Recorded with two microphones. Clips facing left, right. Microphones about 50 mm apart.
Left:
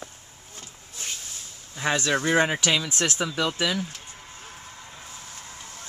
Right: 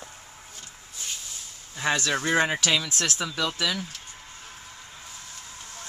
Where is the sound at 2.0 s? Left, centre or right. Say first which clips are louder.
Left 3 dB; centre.